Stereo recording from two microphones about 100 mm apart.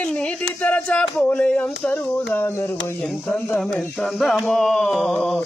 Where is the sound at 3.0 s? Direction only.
5° left (ahead or behind).